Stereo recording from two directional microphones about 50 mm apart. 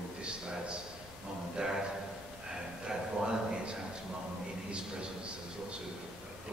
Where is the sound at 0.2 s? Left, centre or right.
Centre.